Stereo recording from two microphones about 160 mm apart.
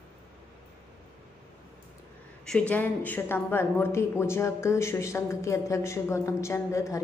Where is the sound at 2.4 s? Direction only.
5° left (ahead or behind).